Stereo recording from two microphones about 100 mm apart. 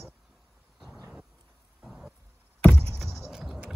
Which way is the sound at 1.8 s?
5° right (ahead or behind).